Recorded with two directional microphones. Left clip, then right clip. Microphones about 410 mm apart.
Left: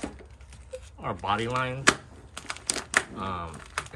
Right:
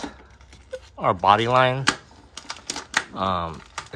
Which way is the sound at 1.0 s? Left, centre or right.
Centre.